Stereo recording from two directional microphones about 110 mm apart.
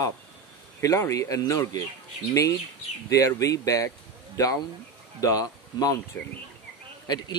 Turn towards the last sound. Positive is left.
turn(degrees=40)  # may be behind; listen again after turning